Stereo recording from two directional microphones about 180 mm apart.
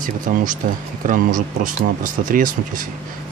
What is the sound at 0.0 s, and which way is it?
Speech, 50° right (ahead or behind).